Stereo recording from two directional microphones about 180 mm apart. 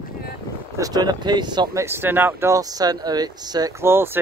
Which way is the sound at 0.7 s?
20° right (ahead or behind).